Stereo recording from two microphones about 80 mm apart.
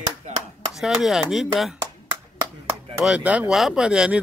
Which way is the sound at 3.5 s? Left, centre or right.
Centre.